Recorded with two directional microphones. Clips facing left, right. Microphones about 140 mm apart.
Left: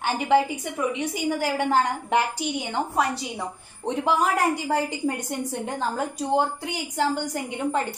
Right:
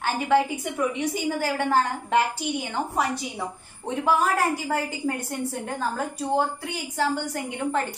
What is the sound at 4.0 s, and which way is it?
A woman's voice, 20° left (ahead or behind).